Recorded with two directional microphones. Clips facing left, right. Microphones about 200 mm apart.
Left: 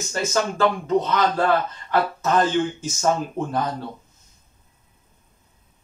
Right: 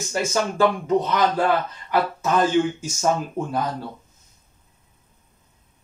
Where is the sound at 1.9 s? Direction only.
10° right (ahead or behind).